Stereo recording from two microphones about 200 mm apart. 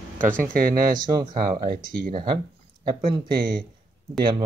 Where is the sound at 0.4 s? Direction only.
45° right (ahead or behind).